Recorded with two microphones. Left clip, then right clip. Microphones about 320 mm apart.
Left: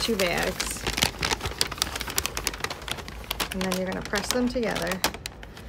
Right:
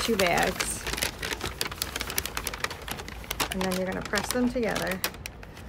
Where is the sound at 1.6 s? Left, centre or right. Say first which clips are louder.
Left 4 dB; centre.